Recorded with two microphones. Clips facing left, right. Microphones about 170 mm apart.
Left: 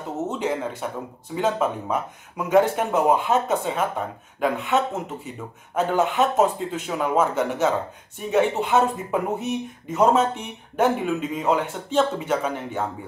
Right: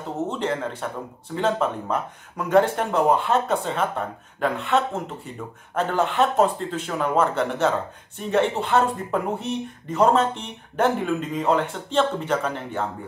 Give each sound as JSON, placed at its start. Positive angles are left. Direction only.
{"t": 0.3, "sound": "speech", "side_deg": 5}